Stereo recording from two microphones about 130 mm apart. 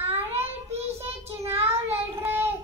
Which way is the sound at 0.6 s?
55° right (ahead or behind).